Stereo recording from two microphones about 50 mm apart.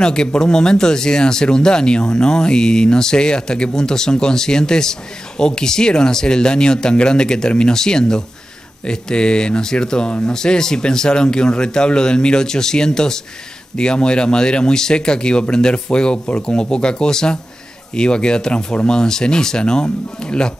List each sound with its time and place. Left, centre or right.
0.0 s speech: centre